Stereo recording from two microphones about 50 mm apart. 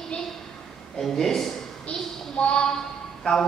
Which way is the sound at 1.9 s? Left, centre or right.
Centre.